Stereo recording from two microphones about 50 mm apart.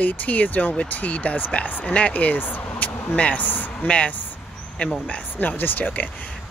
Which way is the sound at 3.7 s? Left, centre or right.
Left.